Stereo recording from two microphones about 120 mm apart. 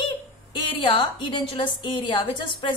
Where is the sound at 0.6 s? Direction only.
45° left (ahead or behind).